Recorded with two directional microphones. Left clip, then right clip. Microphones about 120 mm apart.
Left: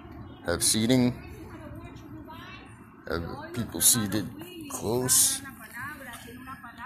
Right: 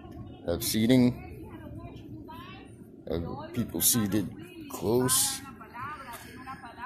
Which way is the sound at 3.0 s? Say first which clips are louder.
Left 1 dB; 25° right (ahead or behind).